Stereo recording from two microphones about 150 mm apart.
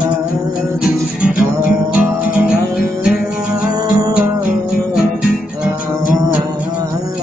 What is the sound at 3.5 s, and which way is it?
Music, 25° right (ahead or behind).